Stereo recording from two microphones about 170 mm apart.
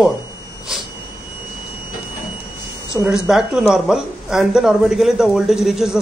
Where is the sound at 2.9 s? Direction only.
5° right (ahead or behind).